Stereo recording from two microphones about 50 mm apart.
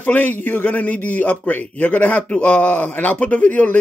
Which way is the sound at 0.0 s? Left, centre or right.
Left.